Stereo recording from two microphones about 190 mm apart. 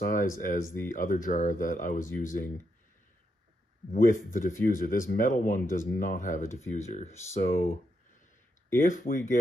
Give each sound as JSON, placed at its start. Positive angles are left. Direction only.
{"t": 0.0, "sound": "speech", "side_deg": 45}
{"t": 3.9, "sound": "speech", "side_deg": 45}
{"t": 8.7, "sound": "speech", "side_deg": 45}